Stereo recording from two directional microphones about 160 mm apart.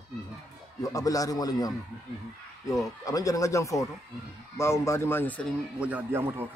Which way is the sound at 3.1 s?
20° left (ahead or behind).